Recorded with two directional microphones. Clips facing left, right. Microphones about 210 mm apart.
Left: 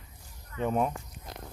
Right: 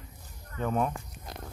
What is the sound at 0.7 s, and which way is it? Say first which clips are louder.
Speech: left 1 dB; 5° left (ahead or behind).